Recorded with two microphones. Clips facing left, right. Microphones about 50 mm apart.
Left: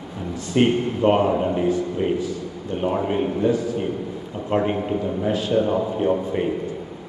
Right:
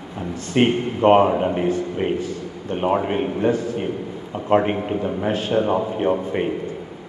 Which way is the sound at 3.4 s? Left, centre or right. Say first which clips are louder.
Even; right.